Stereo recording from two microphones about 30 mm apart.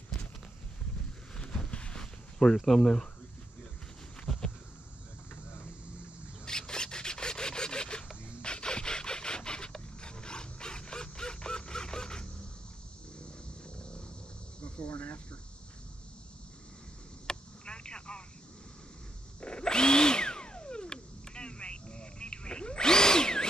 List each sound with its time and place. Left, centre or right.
1.3 s a sound: left
2.5 s speech: centre
6.4 s rub: left
8.4 s wood: left
13.7 s a sound: left
14.6 s cricket: left
17.3 s telephone: left
19.4 s drill: left